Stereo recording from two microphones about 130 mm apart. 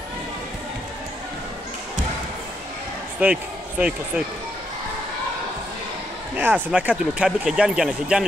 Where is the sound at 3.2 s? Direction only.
10° right (ahead or behind).